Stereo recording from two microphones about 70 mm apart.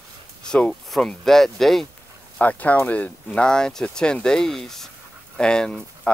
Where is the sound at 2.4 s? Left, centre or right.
Left.